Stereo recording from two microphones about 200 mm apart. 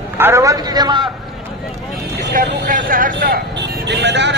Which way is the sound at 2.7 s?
45° right (ahead or behind).